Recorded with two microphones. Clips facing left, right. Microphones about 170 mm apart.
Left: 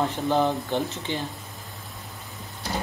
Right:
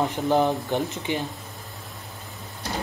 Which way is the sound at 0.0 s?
15° right (ahead or behind).